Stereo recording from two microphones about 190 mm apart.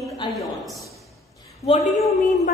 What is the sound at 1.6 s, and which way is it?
Speech, 35° left (ahead or behind).